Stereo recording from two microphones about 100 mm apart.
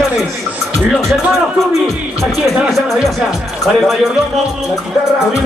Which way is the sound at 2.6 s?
Centre (ahead or behind).